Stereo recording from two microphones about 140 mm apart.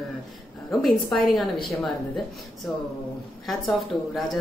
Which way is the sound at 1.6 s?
Centre (ahead or behind).